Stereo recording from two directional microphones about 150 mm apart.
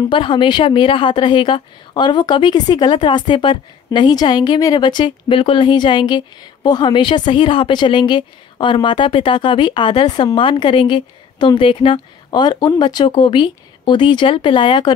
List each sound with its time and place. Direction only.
0.1 s a woman's voice: 35° left (ahead or behind)